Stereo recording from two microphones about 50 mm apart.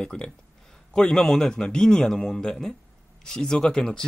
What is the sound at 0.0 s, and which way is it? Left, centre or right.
Speech, centre.